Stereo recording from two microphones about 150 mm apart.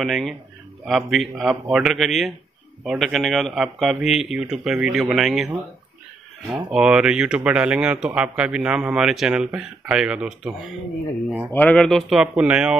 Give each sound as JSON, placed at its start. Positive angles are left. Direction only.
{"t": 0.0, "sound": "speech", "side_deg": 0}
{"t": 6.5, "sound": "speech", "side_deg": -5}
{"t": 11.5, "sound": "speech", "side_deg": 10}
{"t": 11.8, "sound": "speech", "side_deg": 0}